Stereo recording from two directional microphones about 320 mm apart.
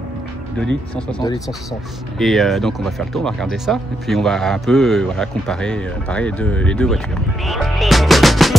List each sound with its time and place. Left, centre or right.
2.1 s a man's voice: centre
7.4 s music: centre